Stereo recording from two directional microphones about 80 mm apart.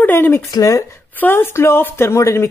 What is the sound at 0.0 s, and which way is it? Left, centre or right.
Speech, left.